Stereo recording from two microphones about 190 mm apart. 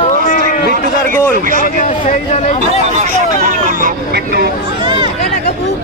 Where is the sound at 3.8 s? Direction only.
50° right (ahead or behind).